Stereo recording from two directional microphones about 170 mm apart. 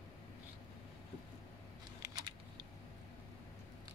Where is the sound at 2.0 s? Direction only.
25° right (ahead or behind).